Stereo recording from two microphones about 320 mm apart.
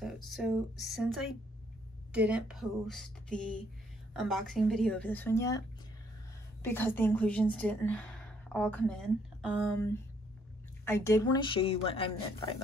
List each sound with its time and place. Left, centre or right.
0.0 s a woman's voice: centre
6.6 s a woman's voice: centre